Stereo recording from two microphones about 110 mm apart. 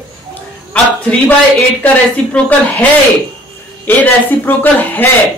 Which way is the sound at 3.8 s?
15° left (ahead or behind).